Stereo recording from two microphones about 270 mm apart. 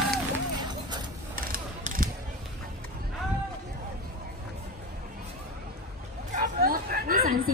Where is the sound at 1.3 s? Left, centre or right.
Right.